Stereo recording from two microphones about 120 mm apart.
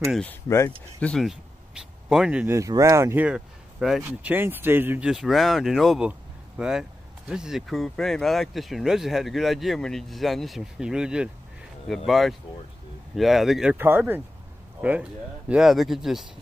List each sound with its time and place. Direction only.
1.0 s speech: 5° left (ahead or behind)
1.3 s a sound: 5° right (ahead or behind)
2.4 s speech: 25° right (ahead or behind)
3.3 s speech: 5° right (ahead or behind)
4.0 s speech: 15° right (ahead or behind)
13.7 s speech: 15° right (ahead or behind)